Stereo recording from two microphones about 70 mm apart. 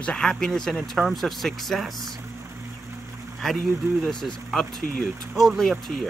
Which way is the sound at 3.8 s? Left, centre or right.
Right.